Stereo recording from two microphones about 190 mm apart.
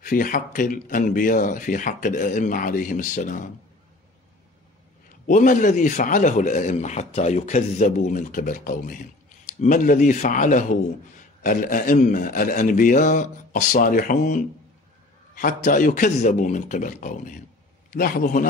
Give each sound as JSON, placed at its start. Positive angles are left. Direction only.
{"t": 0.0, "sound": "speech", "side_deg": 45}
{"t": 5.2, "sound": "speech", "side_deg": 45}